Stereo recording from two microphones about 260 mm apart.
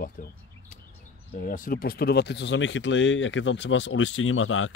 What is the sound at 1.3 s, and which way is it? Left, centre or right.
Speech, left.